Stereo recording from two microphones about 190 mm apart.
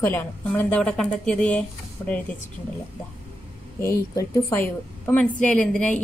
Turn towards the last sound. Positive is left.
turn(degrees=5)  # may be behind; listen again after turning